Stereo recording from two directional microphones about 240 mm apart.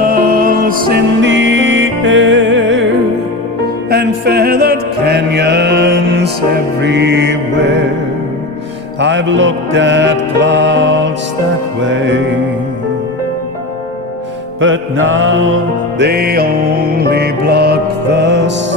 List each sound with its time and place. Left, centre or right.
0.0 s music: right
3.9 s music: right
9.0 s music: right
14.6 s music: right